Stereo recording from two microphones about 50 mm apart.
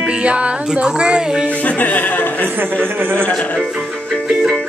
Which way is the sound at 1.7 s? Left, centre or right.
Left.